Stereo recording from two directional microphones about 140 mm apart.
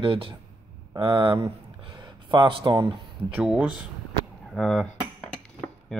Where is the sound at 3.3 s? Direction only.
5° right (ahead or behind).